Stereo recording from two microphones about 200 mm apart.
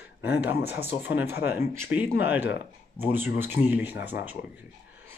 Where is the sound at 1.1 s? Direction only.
10° right (ahead or behind).